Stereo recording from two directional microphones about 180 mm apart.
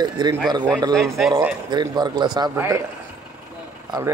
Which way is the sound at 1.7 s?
25° right (ahead or behind).